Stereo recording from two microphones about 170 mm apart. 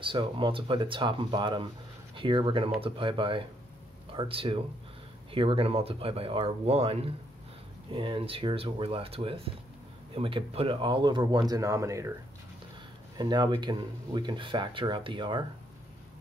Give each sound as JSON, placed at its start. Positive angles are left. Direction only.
{"t": 0.0, "sound": "speech", "side_deg": -30}
{"t": 13.2, "sound": "speech", "side_deg": -25}